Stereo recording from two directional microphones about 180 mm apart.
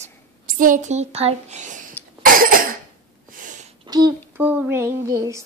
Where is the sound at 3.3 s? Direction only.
45° right (ahead or behind).